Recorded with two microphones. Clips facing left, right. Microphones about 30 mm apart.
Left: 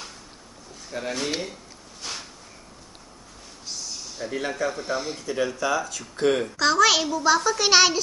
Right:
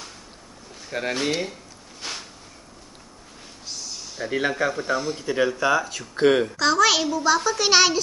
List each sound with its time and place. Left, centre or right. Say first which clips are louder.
0.8 s speech: right 4 dB; right
2.0 s a sound: right 1 dB; centre
3.6 s a sound: even; centre
4.3 s speech: right 5 dB; right
4.6 s speech: right 3 dB; centre
6.5 s a woman's voice: even; centre